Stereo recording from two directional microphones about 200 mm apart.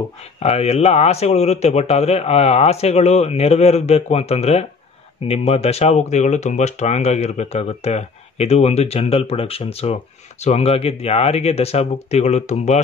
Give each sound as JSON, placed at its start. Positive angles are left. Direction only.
{"t": 0.2, "sound": "speech", "side_deg": 30}